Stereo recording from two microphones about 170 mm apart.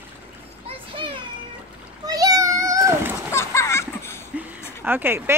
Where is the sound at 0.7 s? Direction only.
30° right (ahead or behind).